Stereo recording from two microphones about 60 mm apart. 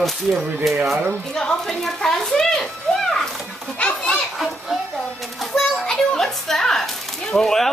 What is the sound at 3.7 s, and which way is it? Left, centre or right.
Children playing, centre.